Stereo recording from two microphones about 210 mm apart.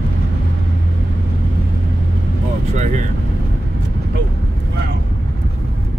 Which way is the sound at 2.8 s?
35° right (ahead or behind).